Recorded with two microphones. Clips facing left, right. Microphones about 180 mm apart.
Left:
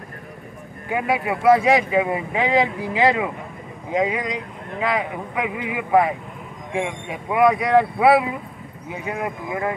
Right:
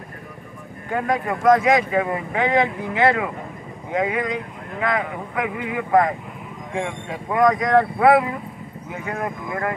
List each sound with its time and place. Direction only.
0.8 s speech: 10° left (ahead or behind)